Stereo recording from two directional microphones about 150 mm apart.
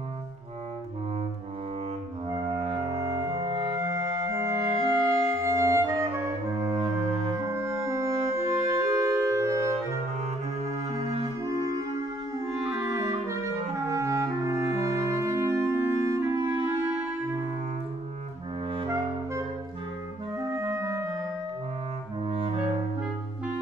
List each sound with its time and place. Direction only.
2.4 s music: 40° right (ahead or behind)
2.9 s music: 20° right (ahead or behind)
3.8 s music: 20° right (ahead or behind)
11.0 s music: 45° right (ahead or behind)
13.3 s clarinet: 20° right (ahead or behind)
16.8 s music: 15° right (ahead or behind)
20.3 s clarinet: 20° right (ahead or behind)
22.2 s music: 35° right (ahead or behind)